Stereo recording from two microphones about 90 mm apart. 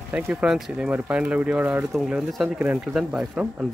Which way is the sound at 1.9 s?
Centre (ahead or behind).